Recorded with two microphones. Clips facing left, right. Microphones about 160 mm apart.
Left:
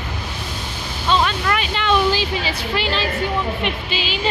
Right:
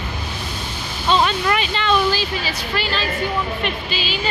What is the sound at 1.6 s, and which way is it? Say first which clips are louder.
Speech: even; 10° left (ahead or behind).